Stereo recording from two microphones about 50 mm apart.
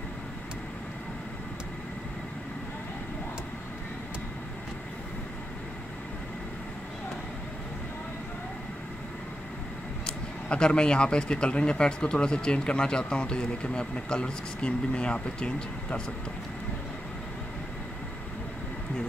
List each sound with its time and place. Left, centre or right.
10.0 s speech: centre